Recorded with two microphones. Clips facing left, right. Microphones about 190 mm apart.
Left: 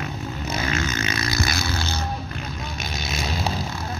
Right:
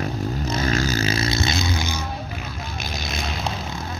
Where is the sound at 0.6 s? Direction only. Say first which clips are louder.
Right 5 dB; 35° right (ahead or behind); by 1.8 s 20° right (ahead or behind).